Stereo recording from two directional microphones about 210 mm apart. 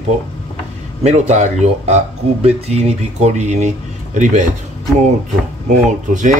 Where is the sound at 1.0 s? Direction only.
35° right (ahead or behind).